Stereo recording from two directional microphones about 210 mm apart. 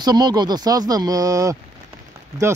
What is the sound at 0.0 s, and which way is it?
Speech, 20° right (ahead or behind).